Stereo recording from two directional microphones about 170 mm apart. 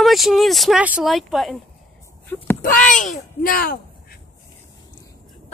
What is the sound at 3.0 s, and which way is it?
A child's voice, 50° left (ahead or behind).